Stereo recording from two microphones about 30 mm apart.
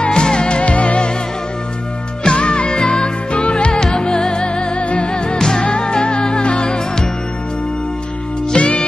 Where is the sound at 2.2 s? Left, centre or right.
Left.